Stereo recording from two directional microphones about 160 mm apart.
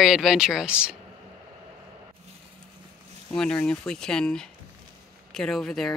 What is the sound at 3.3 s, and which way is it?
Speech, 5° left (ahead or behind).